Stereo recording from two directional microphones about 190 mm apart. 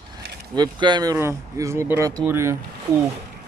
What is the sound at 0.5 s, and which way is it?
Speech, 20° right (ahead or behind).